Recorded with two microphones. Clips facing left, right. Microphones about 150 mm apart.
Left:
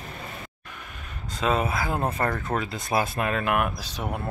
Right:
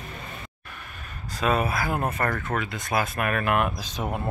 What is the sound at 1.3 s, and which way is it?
Speech, 20° left (ahead or behind).